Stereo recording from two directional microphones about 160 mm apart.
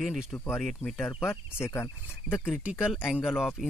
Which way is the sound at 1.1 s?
15° left (ahead or behind).